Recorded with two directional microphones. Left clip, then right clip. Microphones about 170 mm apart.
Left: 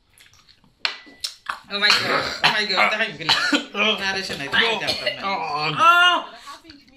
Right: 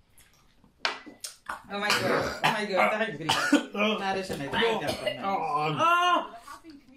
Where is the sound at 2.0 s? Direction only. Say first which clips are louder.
Left 5 dB; 20° right (ahead or behind).